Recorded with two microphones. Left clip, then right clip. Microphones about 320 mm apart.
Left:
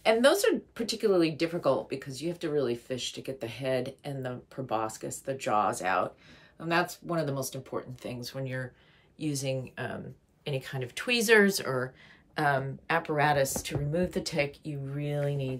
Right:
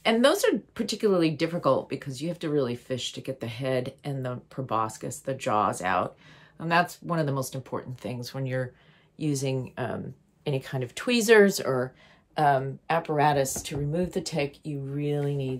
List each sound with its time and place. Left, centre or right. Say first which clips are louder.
0.0 s speech: right 1 dB; right; by 15.5 s centre